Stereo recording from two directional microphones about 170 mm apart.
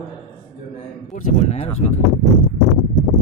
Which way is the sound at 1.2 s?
40° left (ahead or behind).